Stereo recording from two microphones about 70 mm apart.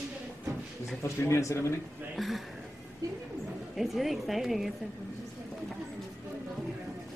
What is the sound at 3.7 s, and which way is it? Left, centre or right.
Speech, centre.